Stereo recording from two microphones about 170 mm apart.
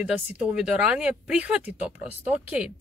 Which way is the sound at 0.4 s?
5° right (ahead or behind).